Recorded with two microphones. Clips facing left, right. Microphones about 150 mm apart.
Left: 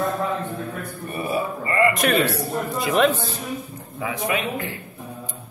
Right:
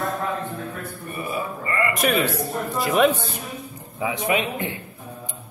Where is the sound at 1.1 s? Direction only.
30° left (ahead or behind).